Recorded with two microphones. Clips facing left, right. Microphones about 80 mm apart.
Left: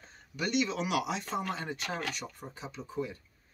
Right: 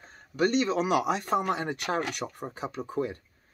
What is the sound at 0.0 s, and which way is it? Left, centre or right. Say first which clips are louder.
Speech: right 9 dB; right.